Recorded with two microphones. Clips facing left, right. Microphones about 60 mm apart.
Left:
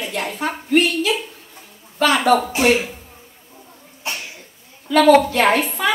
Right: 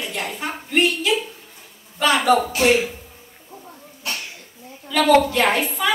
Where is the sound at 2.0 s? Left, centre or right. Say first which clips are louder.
Left 1 dB; left.